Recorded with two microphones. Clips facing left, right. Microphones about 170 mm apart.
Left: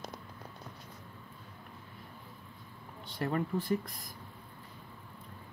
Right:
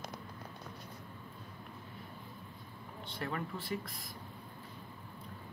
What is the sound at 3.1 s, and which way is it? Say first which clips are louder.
Speech: left 6 dB; 35° left (ahead or behind).